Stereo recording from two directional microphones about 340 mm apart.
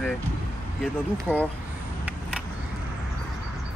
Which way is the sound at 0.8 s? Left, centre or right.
Centre.